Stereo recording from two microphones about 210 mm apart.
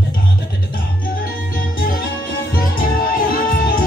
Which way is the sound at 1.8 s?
45° left (ahead or behind).